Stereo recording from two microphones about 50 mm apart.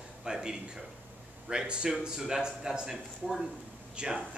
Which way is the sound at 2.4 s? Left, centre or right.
Centre.